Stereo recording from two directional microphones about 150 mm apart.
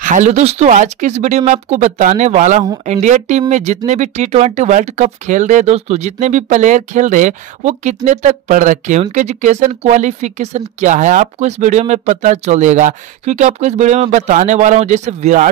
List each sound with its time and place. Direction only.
0.0 s speech: 55° right (ahead or behind)